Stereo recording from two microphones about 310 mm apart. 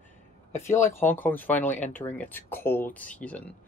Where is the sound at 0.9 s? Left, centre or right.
Centre.